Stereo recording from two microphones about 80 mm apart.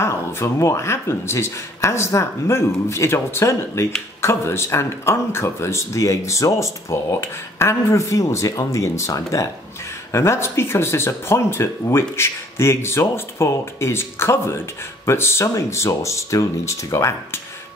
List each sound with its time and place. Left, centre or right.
0.0 s speech: left